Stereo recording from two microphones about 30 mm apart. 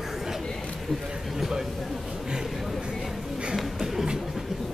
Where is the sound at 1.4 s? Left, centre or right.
Centre.